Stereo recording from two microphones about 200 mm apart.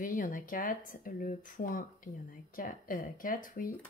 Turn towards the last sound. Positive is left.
turn(degrees=40)  # may be behind; listen again after turning